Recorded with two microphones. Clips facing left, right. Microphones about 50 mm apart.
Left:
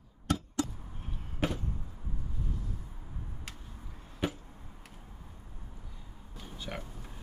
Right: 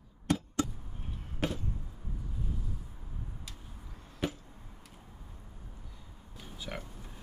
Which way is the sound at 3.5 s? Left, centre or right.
Left.